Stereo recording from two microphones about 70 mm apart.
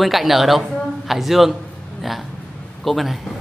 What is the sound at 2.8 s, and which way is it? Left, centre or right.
Speech, centre.